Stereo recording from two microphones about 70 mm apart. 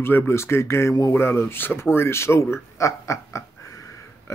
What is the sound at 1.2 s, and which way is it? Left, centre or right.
Speech, left.